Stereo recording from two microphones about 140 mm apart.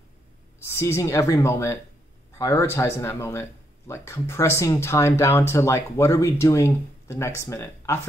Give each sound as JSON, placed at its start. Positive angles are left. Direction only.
{"t": 0.7, "sound": "speech", "side_deg": 20}